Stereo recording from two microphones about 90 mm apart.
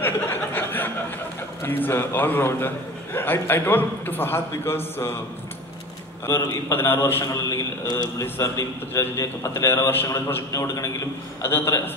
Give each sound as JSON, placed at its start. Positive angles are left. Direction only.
{"t": 0.0, "sound": "a sound", "side_deg": 25}
{"t": 1.6, "sound": "a man's voice", "side_deg": 25}
{"t": 6.2, "sound": "a man's voice", "side_deg": 30}